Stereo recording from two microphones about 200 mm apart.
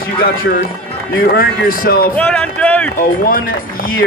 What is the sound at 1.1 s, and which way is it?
Speech, 50° left (ahead or behind).